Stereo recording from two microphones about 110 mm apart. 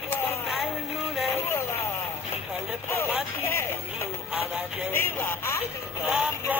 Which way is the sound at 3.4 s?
25° left (ahead or behind).